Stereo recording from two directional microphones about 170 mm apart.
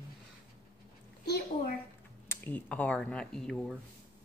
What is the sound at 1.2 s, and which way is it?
Speech, 65° left (ahead or behind).